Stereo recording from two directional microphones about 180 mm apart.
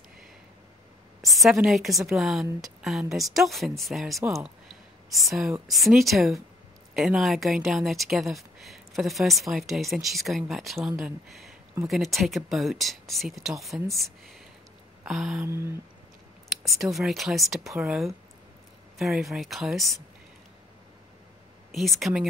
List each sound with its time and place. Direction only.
1.3 s speech: centre (ahead or behind)
15.0 s speech: centre (ahead or behind)
16.6 s speech: centre (ahead or behind)
21.7 s speech: centre (ahead or behind)